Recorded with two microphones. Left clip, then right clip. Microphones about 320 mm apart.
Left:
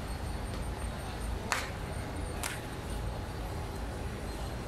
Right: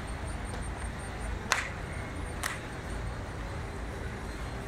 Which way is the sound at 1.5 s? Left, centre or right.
Right.